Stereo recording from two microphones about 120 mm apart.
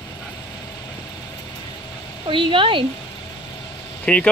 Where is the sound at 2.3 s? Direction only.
45° right (ahead or behind).